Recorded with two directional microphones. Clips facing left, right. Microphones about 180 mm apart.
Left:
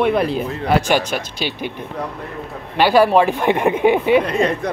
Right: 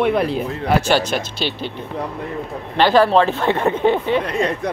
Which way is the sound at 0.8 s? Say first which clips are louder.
Right 1 dB; 15° left (ahead or behind).